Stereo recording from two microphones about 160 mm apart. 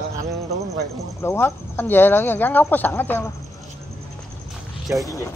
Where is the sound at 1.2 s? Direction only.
15° left (ahead or behind).